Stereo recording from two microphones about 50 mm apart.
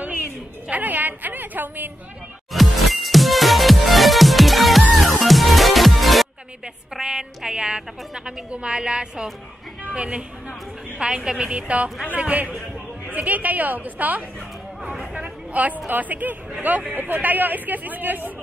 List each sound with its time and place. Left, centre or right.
0.7 s a man's voice: right
2.5 s music: centre
6.9 s a woman's voice: centre; by 14.2 s right
15.1 s a sound: right
15.9 s a man's voice: right